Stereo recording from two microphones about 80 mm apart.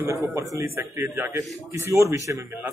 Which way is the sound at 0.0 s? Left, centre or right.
Right.